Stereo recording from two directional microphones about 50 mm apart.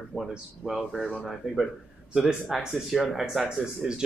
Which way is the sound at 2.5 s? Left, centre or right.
Centre.